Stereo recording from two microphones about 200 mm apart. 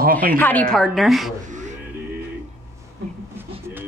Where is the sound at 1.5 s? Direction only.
35° right (ahead or behind).